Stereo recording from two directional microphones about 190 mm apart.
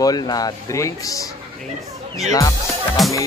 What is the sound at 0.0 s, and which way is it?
Speech, 20° left (ahead or behind).